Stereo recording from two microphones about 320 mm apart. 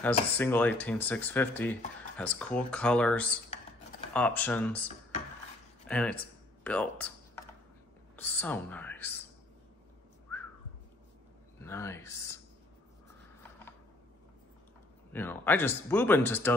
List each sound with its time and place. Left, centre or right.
0.4 s speech: centre
5.9 s speech: centre
8.2 s speech: centre
11.6 s speech: centre
15.1 s speech: centre